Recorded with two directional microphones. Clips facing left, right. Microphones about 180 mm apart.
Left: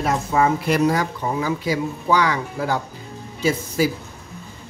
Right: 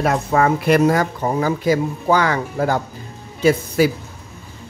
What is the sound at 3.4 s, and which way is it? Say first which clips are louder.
Speech: right 5 dB; 65° right (ahead or behind).